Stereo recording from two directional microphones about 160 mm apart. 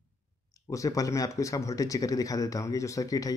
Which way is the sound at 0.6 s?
20° left (ahead or behind).